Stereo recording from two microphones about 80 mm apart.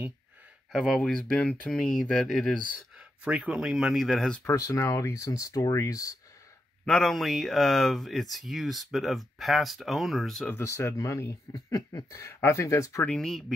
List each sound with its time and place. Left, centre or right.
0.7 s speech: centre
1.3 s speech: centre
1.7 s speech: centre
3.0 s a sound: centre
3.5 s speech: centre
4.5 s speech: left
6.9 s speech: centre
10.5 s speech: left
11.5 s speech: left
12.2 s speech: left
13.0 s speech: centre